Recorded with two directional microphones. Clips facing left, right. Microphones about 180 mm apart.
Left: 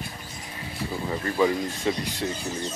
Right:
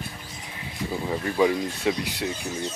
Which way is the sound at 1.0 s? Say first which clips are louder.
Right 1 dB; 10° right (ahead or behind).